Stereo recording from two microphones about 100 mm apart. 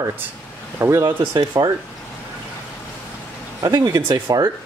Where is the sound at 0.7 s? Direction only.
25° right (ahead or behind).